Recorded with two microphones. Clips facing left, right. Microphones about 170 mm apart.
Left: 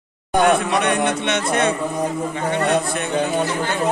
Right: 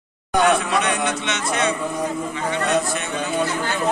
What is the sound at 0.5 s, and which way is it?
A man's voice, 55° left (ahead or behind).